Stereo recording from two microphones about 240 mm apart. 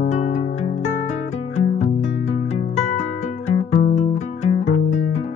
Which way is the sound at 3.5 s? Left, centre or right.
Left.